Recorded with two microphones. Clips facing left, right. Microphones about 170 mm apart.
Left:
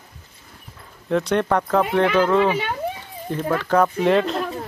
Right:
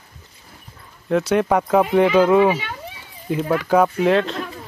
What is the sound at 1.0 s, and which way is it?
Speech, 5° right (ahead or behind).